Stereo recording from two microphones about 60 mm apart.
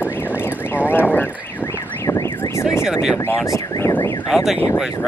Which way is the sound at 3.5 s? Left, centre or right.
Left.